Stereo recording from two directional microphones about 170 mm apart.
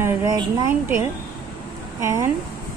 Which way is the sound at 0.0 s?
15° right (ahead or behind).